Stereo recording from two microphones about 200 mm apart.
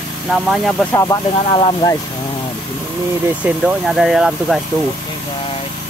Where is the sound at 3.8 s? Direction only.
Centre (ahead or behind).